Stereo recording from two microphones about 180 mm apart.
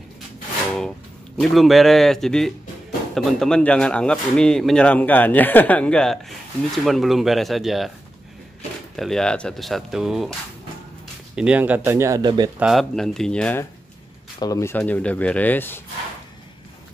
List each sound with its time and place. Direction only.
1.4 s speech: centre (ahead or behind)
8.9 s speech: centre (ahead or behind)
11.3 s speech: 5° right (ahead or behind); by 12.4 s 25° right (ahead or behind)
12.5 s speech: centre (ahead or behind)
14.4 s speech: 15° left (ahead or behind)